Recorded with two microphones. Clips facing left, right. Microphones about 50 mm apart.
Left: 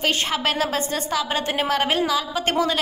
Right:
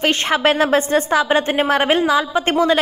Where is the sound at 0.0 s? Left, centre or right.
Right.